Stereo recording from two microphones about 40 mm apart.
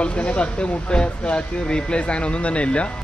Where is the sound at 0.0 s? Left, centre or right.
Left.